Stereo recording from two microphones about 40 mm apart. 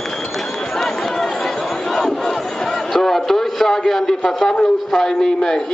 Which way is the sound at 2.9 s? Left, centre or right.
Centre.